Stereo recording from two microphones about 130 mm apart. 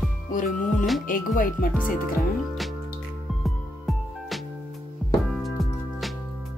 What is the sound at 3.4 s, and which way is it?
Music, centre (ahead or behind).